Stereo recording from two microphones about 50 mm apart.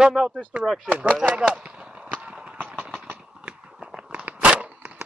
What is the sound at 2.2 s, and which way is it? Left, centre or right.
Clip-clop, right.